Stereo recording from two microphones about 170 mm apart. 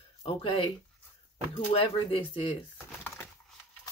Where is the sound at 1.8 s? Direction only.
35° left (ahead or behind).